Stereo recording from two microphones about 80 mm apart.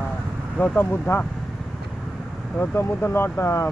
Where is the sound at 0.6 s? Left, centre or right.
Left.